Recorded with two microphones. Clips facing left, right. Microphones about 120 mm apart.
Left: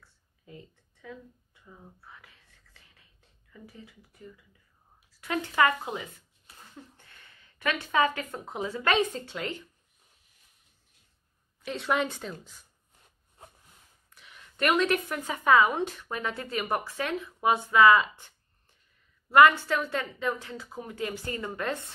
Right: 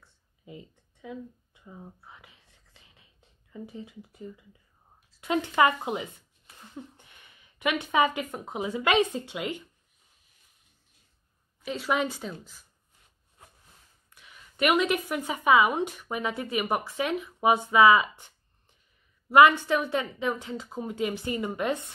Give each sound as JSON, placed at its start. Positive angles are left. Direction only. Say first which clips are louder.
{"t": 0.0, "sound": "a sound", "louder": "right 4 dB", "side_deg": -15}
{"t": 5.1, "sound": "speech", "louder": "right 3 dB", "side_deg": -20}
{"t": 11.6, "sound": "a woman's voice", "louder": "right 1 dB", "side_deg": 0}
{"t": 14.2, "sound": "a woman's voice", "louder": "right 2 dB", "side_deg": -5}